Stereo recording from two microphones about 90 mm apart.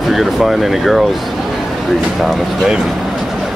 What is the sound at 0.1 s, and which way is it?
Speech, centre (ahead or behind).